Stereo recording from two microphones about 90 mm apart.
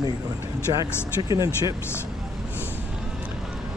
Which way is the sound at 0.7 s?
70° right (ahead or behind).